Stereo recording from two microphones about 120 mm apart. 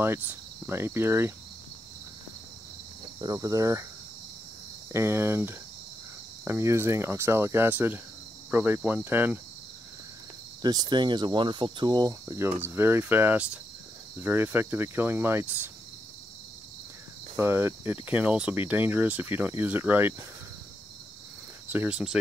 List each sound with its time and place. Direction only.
0.0 s speech: 20° right (ahead or behind)
3.2 s speech: 30° right (ahead or behind)
4.9 s speech: 20° right (ahead or behind)
10.6 s speech: 35° right (ahead or behind); by 15.7 s 15° right (ahead or behind)
17.4 s speech: 20° right (ahead or behind)
21.6 s speech: 10° right (ahead or behind)